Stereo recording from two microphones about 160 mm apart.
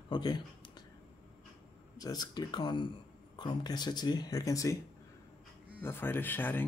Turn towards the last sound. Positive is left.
turn(degrees=10)  # may be behind; listen again after turning